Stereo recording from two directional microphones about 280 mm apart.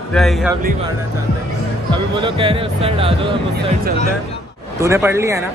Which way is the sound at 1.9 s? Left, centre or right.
Centre.